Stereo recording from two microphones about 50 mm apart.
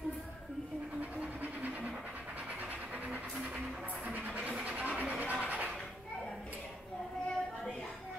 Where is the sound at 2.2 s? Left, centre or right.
Right.